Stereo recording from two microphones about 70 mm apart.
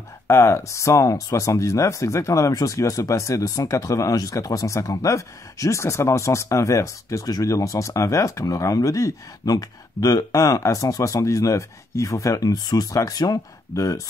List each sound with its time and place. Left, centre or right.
0.3 s speech: left
13.7 s speech: left